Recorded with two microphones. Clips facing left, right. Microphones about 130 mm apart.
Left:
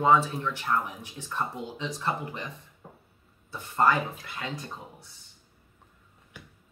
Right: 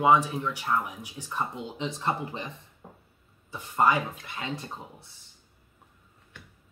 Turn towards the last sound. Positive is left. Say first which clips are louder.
# even
turn(degrees=-25)  # may be behind; listen again after turning